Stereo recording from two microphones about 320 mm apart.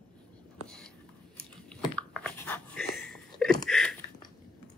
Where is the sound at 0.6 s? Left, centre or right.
Centre.